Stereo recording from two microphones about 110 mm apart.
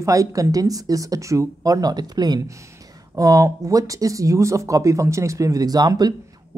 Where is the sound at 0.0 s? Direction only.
30° right (ahead or behind).